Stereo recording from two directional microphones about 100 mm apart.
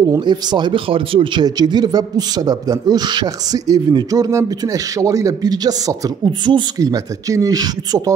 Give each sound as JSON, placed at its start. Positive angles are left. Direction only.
{"t": 0.2, "sound": "speech", "side_deg": -50}
{"t": 1.4, "sound": "a man's voice", "side_deg": -45}
{"t": 6.8, "sound": "a man's voice", "side_deg": -35}